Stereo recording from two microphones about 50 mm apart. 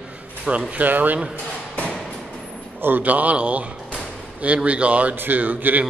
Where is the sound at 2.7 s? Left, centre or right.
Right.